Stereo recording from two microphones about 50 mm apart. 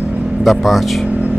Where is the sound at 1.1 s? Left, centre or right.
Right.